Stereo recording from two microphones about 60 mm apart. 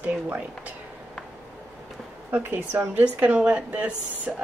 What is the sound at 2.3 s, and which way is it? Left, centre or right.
Speech, right.